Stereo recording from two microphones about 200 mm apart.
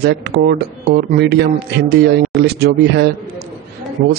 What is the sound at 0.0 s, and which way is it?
Speech, 55° right (ahead or behind).